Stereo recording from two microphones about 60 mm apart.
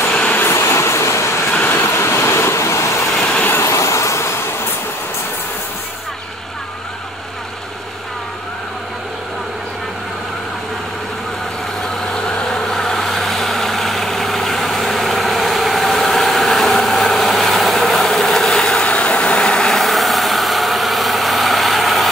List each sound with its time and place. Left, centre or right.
0.1 s train: left
0.5 s train: left
1.5 s vehicle: left
3.1 s vehicle: centre
3.4 s vehicle: left
12.1 s vehicle: centre
19.8 s vehicle: centre